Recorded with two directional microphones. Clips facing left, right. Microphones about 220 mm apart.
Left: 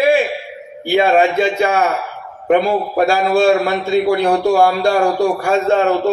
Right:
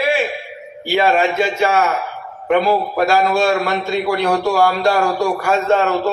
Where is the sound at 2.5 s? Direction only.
35° left (ahead or behind).